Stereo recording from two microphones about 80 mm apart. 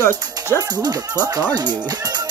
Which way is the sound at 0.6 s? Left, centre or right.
Right.